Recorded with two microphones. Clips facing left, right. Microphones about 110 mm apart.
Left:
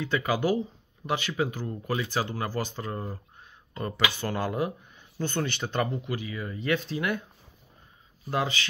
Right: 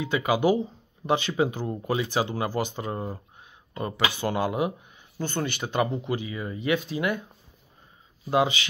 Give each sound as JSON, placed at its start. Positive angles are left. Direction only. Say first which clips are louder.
{"t": 0.0, "sound": "speech", "louder": "right 3 dB", "side_deg": -15}
{"t": 5.9, "sound": "speech", "louder": "right 3 dB", "side_deg": -25}
{"t": 8.3, "sound": "speech", "louder": "right 6 dB", "side_deg": -15}